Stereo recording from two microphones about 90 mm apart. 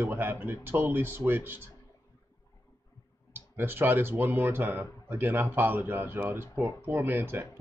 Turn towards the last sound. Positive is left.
turn(degrees=-25)  # may be behind; listen again after turning